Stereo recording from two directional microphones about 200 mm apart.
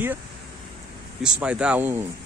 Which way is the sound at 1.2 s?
5° right (ahead or behind).